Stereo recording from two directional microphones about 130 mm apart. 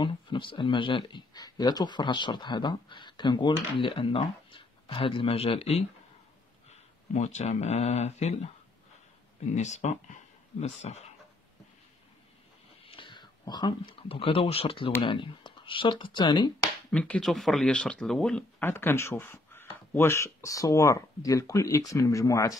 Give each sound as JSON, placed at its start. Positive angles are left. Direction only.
{"t": 0.0, "sound": "speech", "side_deg": 40}
{"t": 9.5, "sound": "speech", "side_deg": 65}
{"t": 12.8, "sound": "speech", "side_deg": 40}
{"t": 16.9, "sound": "speech", "side_deg": 5}
{"t": 18.6, "sound": "speech", "side_deg": 15}